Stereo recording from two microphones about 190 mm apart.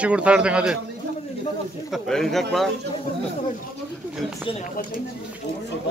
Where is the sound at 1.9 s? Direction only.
Centre (ahead or behind).